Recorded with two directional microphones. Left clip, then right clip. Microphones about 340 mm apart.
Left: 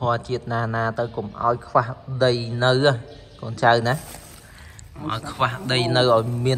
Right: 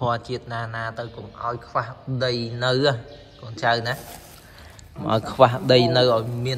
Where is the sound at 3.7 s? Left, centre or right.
Centre.